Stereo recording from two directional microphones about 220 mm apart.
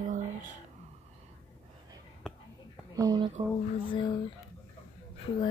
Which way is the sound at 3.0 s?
20° right (ahead or behind).